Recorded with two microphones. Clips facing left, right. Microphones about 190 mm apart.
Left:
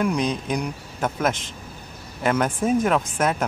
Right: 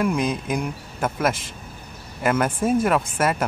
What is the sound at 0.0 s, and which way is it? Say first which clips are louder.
Speech: even; 5° right (ahead or behind).